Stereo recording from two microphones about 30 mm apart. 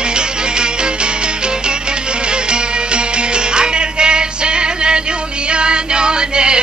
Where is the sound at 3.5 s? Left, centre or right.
Right.